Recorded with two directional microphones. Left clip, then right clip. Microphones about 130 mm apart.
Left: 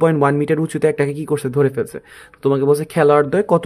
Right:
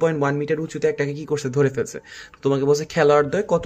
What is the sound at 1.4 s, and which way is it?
Speech, 40° left (ahead or behind).